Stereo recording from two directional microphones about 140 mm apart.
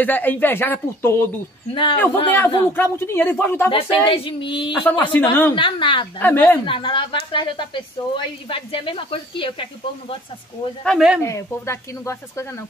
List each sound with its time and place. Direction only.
0.0 s speech: 15° left (ahead or behind)
1.7 s speech: 35° left (ahead or behind)
2.7 s speech: 15° left (ahead or behind)
3.7 s speech: 40° left (ahead or behind)
4.8 s speech: 10° left (ahead or behind)
5.6 s speech: 35° left (ahead or behind)
6.1 s speech: 15° left (ahead or behind)
6.6 s speech: 35° left (ahead or behind)
10.8 s speech: 5° left (ahead or behind)
11.2 s speech: 20° left (ahead or behind)